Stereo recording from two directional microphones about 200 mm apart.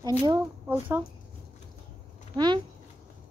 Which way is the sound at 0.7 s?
10° right (ahead or behind).